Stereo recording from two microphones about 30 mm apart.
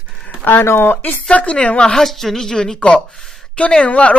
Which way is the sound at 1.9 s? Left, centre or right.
Centre.